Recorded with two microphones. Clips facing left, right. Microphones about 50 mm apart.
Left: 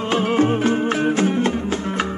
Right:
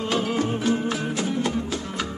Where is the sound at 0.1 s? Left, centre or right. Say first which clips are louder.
Left 8 dB; left.